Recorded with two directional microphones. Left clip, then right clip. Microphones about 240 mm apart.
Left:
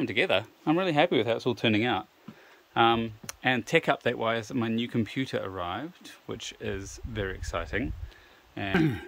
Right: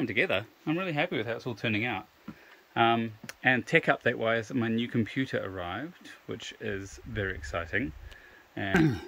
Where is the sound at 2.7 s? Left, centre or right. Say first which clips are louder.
Left 2 dB; centre.